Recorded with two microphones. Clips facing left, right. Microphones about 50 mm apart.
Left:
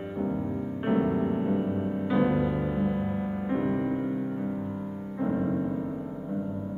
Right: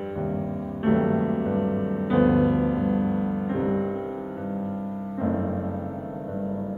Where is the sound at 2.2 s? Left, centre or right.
Right.